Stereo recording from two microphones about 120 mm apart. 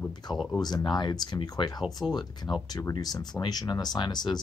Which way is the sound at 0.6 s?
35° left (ahead or behind).